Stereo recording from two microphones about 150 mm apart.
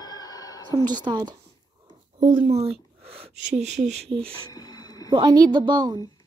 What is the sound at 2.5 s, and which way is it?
Speech, 45° right (ahead or behind).